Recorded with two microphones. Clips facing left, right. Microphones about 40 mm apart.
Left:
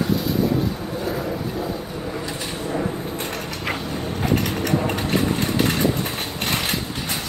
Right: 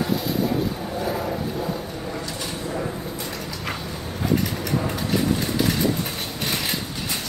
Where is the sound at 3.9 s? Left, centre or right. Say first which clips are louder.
Even; left.